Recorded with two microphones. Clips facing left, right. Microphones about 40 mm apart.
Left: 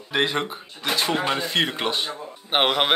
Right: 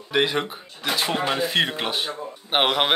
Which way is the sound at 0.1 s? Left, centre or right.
Centre.